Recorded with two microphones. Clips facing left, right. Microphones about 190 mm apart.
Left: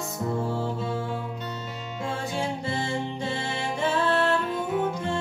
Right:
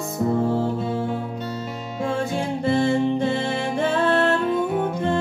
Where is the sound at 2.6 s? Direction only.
55° right (ahead or behind).